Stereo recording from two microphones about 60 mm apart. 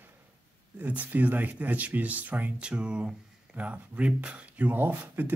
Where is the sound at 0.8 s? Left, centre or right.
Right.